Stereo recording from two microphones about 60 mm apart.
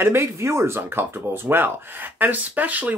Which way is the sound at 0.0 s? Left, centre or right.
Right.